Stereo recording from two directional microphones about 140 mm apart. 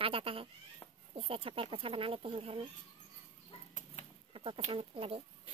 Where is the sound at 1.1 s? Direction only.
40° right (ahead or behind).